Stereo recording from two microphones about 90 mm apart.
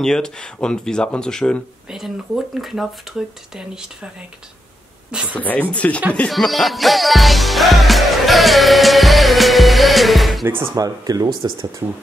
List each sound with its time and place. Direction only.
0.0 s speech: 10° left (ahead or behind)
1.9 s music: 5° right (ahead or behind)
5.3 s speech: 20° left (ahead or behind)
6.1 s music: 5° left (ahead or behind)
10.4 s speech: 25° right (ahead or behind)
10.7 s speech: 45° right (ahead or behind)